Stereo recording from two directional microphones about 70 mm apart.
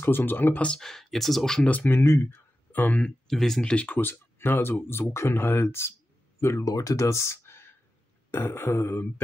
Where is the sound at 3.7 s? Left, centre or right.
Left.